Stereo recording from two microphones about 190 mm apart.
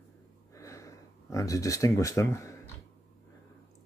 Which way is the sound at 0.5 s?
15° left (ahead or behind).